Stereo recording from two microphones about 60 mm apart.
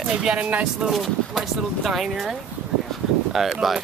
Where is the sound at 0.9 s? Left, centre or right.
Centre.